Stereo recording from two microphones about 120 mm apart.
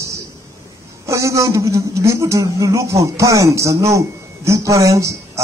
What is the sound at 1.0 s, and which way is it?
A man's voice, 25° right (ahead or behind).